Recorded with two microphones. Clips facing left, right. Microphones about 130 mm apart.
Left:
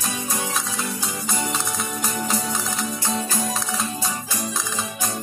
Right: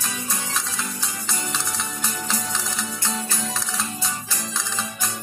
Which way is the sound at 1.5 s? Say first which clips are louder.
Left 3 dB; 45° left (ahead or behind).